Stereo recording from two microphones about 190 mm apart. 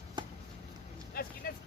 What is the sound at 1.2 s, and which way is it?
Vehicle, 50° left (ahead or behind).